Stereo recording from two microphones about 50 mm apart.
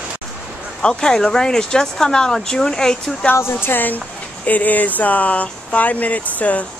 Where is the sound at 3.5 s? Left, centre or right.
Left.